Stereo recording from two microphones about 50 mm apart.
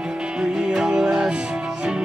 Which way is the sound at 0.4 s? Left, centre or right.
Centre.